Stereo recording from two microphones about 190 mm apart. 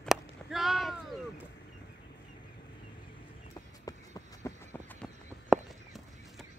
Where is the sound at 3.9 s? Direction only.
20° left (ahead or behind).